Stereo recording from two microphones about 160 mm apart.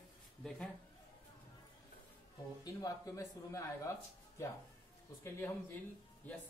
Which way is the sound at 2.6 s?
20° left (ahead or behind).